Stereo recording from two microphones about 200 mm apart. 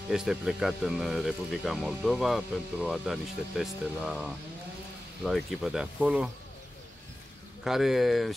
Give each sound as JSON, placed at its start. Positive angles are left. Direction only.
{"t": 0.1, "sound": "speech", "side_deg": 0}
{"t": 7.6, "sound": "speech", "side_deg": 0}